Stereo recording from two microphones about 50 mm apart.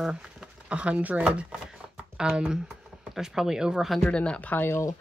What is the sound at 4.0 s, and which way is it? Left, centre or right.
Speech, left.